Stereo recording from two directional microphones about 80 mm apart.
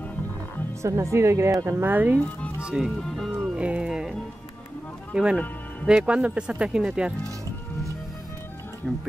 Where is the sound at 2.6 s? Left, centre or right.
Centre.